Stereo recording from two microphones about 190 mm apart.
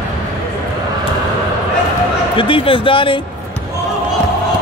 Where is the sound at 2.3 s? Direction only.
25° left (ahead or behind).